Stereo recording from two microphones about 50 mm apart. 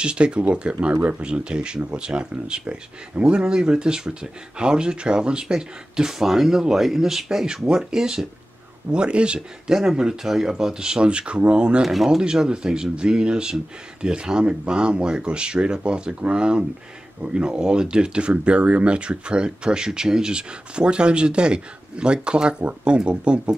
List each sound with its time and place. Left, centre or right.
0.0 s speech: right
9.7 s speech: centre
11.8 s speech: centre
12.2 s speech: centre